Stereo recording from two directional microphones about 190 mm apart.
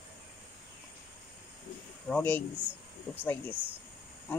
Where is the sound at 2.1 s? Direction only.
10° left (ahead or behind).